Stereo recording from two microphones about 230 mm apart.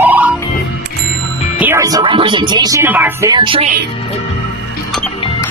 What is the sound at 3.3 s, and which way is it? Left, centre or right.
Music, right.